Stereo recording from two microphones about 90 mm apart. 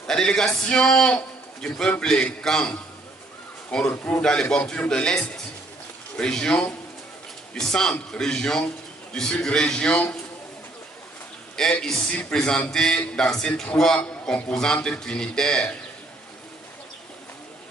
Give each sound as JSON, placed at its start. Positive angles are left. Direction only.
{"t": 0.0, "sound": "a man's voice", "side_deg": 10}
{"t": 11.5, "sound": "a man's voice", "side_deg": 5}